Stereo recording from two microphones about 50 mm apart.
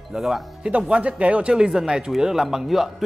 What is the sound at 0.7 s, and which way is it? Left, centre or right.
Speech, right.